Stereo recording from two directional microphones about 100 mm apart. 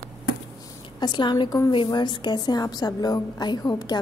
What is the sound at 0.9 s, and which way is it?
A woman's voice, 45° left (ahead or behind).